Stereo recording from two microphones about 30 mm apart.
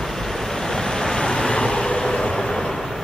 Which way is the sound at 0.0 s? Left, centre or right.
Centre.